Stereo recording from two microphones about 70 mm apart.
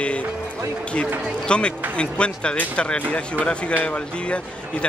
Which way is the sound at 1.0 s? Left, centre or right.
Right.